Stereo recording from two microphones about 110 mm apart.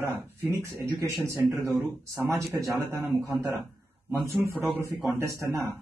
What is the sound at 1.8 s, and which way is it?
Speech, 25° right (ahead or behind).